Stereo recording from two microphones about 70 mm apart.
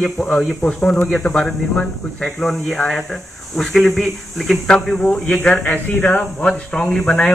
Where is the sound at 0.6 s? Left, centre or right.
Centre.